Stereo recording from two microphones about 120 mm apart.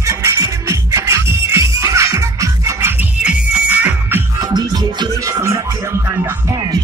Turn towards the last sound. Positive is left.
turn(degrees=-25)  # may be behind; listen again after turning